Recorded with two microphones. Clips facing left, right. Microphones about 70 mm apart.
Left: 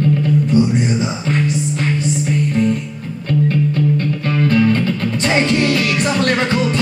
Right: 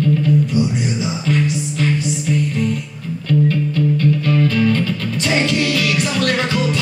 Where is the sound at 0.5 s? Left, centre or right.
Left.